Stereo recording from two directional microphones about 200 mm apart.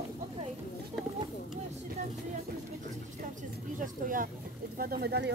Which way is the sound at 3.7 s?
40° right (ahead or behind).